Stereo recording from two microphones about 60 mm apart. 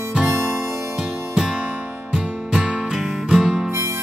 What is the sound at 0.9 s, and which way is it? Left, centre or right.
Music, centre.